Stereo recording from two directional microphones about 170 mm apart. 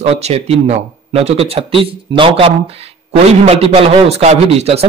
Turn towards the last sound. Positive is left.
turn(degrees=-40)  # may be behind; listen again after turning